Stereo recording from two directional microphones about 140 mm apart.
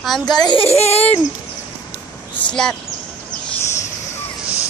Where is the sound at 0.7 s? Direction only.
50° left (ahead or behind).